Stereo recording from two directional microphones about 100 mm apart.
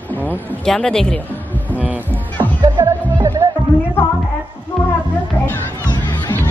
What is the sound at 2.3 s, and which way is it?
Music, 45° right (ahead or behind).